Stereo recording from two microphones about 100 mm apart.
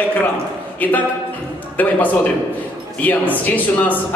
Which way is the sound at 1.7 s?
15° left (ahead or behind).